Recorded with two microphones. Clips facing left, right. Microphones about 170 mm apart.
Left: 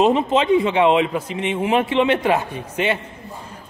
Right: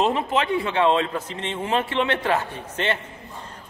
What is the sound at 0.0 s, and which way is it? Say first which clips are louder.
A man's voice: left 5 dB; 20° left (ahead or behind).